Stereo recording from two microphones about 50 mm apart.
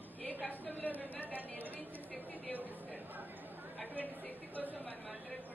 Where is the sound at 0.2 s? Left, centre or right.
Left.